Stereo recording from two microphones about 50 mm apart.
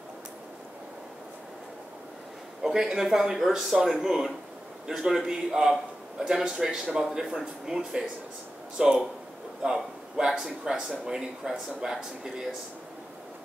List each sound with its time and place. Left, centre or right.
2.6 s a man's voice: centre
7.0 s a man's voice: centre